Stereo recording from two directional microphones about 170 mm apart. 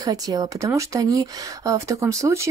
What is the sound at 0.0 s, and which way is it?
A woman's voice, 20° right (ahead or behind).